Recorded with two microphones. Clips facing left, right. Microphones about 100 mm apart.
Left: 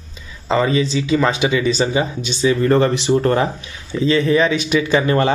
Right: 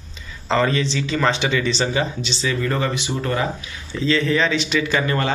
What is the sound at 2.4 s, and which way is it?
Speech, 30° left (ahead or behind).